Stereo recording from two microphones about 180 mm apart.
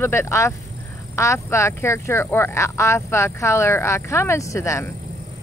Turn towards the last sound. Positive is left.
turn(degrees=15)  # may be behind; listen again after turning